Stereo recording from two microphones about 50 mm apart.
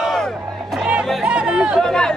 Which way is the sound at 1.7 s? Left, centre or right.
Centre.